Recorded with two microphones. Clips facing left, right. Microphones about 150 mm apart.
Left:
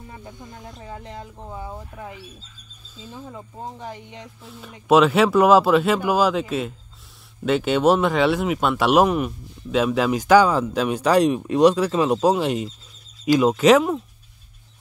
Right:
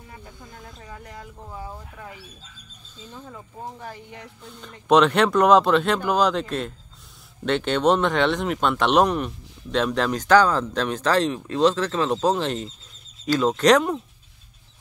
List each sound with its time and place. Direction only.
0.1 s speech: 20° left (ahead or behind)
3.0 s speech: 10° left (ahead or behind)
4.4 s speech: 5° left (ahead or behind)